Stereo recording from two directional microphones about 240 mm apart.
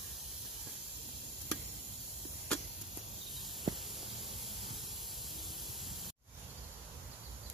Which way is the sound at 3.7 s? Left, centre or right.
Centre.